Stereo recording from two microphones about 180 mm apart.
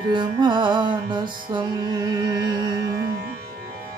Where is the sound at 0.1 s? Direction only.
25° right (ahead or behind).